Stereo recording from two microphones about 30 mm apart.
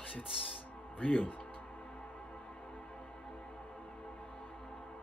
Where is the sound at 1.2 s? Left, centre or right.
Left.